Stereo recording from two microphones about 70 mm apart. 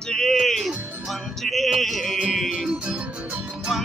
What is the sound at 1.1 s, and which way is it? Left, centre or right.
Speech, centre.